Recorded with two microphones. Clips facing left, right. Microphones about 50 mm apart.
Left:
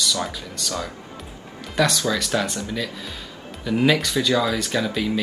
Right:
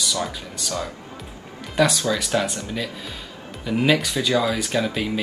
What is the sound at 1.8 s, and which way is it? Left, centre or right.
Speech, centre.